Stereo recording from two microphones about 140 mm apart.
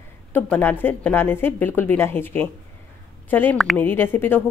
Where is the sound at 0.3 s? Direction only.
15° left (ahead or behind).